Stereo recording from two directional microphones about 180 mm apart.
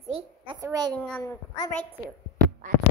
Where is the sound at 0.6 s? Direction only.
20° right (ahead or behind).